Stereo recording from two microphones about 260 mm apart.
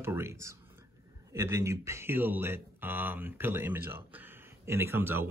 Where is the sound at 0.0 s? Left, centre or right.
Centre.